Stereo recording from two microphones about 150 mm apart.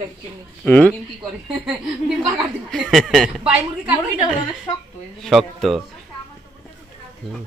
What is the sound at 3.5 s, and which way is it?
Speech, 10° right (ahead or behind).